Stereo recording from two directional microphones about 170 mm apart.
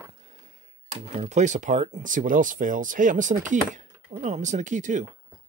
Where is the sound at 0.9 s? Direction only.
45° right (ahead or behind).